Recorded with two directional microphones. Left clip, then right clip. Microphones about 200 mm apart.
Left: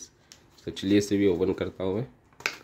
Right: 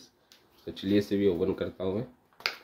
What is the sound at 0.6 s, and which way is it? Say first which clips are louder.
Speech: left 3 dB; 35° left (ahead or behind).